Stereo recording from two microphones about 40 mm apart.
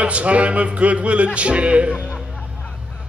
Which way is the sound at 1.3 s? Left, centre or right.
Right.